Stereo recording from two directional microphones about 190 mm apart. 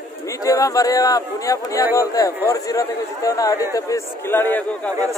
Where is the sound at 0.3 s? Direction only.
20° left (ahead or behind).